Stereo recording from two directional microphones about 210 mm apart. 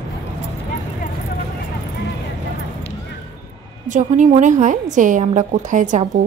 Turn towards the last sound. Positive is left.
turn(degrees=-35)  # may be behind; listen again after turning